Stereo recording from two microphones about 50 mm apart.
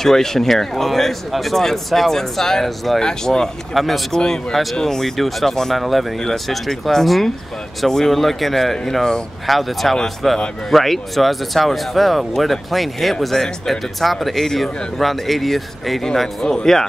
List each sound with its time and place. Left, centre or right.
0.0 s speech: centre
3.0 s speech: centre
3.7 s speech: centre
4.1 s speech: centre